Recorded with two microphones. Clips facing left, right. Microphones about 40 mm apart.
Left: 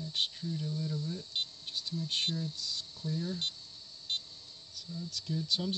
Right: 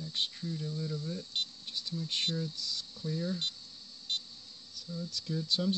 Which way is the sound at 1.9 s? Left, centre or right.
Right.